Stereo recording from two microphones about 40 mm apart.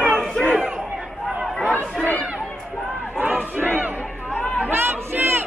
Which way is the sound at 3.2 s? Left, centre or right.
Right.